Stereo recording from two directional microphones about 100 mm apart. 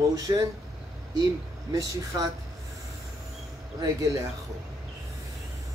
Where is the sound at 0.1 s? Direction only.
35° right (ahead or behind).